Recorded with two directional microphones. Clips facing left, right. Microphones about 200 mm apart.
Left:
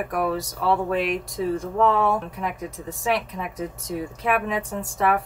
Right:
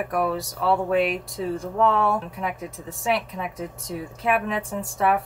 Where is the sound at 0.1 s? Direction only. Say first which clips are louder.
Even; centre (ahead or behind).